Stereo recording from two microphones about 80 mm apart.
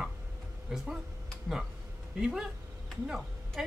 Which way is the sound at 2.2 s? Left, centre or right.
Centre.